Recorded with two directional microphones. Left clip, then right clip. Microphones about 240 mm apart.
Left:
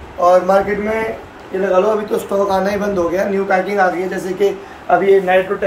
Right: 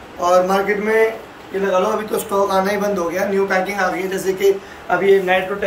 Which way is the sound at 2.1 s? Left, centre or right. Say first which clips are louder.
Left 1 dB; left.